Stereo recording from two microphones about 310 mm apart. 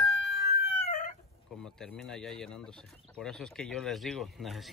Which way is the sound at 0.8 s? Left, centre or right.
Left.